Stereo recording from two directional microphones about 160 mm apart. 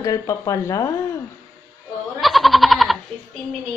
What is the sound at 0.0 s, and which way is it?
Speech, 20° left (ahead or behind).